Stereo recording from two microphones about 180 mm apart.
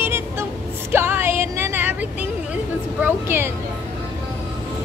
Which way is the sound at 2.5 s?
10° right (ahead or behind).